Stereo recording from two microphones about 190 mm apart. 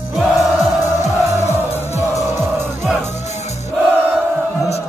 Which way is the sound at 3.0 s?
35° left (ahead or behind).